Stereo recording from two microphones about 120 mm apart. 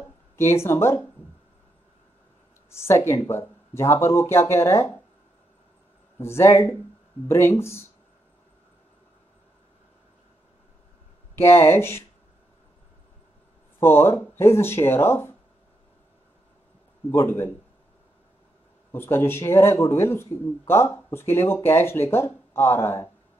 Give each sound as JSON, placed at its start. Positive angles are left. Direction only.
{"t": 0.7, "sound": "speech", "side_deg": 20}
{"t": 2.7, "sound": "speech", "side_deg": 20}
{"t": 6.1, "sound": "speech", "side_deg": 20}
{"t": 11.3, "sound": "speech", "side_deg": 20}
{"t": 13.7, "sound": "speech", "side_deg": 20}
{"t": 17.1, "sound": "speech", "side_deg": 20}
{"t": 18.9, "sound": "speech", "side_deg": 20}